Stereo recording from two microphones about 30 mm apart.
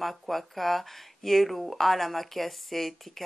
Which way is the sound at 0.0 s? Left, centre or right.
Centre.